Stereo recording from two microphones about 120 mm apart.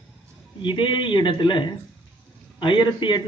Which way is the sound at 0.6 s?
40° left (ahead or behind).